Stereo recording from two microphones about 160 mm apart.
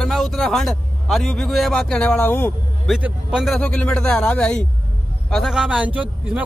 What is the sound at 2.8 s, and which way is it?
A man's voice, 5° right (ahead or behind).